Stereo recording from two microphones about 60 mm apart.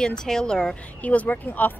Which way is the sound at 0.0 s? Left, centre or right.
Centre.